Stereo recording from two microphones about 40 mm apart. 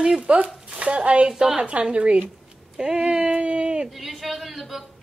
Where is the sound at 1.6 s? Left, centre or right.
Right.